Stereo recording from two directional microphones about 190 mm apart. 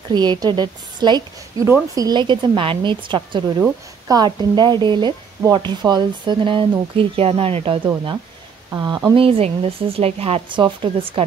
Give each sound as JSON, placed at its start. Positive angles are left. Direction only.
{"t": 0.1, "sound": "speech", "side_deg": -20}